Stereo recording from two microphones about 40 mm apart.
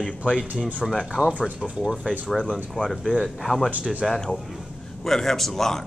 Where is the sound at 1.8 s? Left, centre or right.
Centre.